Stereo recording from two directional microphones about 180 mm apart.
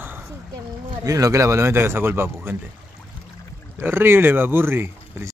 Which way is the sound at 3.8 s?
10° right (ahead or behind).